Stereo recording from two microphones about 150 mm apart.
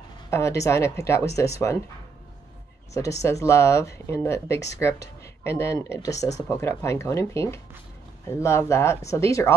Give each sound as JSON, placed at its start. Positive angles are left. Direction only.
{"t": 0.3, "sound": "speech", "side_deg": 20}
{"t": 2.9, "sound": "speech", "side_deg": 20}